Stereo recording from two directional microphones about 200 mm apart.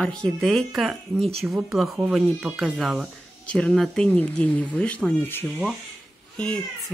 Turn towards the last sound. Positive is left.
turn(degrees=5)  # may be behind; listen again after turning